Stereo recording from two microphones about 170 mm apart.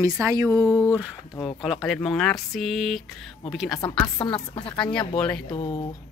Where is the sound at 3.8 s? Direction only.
20° left (ahead or behind).